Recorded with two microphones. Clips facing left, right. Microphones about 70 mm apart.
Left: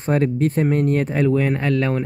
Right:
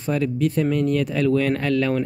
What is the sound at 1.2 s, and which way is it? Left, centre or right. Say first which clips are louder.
Speech: even; centre.